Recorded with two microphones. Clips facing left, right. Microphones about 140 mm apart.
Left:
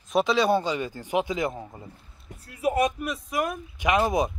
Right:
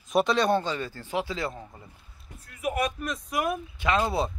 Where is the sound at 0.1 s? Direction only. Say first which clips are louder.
Left 1 dB; centre (ahead or behind); by 1.9 s 20° left (ahead or behind).